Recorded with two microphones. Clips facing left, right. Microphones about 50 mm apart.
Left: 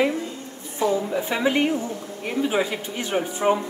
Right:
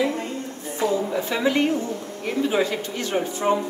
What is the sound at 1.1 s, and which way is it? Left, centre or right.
A woman's voice, centre.